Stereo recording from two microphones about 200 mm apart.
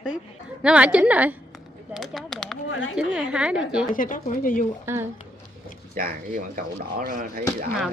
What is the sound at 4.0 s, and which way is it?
Speech, 40° left (ahead or behind).